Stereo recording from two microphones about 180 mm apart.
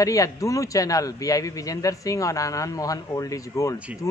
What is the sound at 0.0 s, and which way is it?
A man's voice, 20° left (ahead or behind).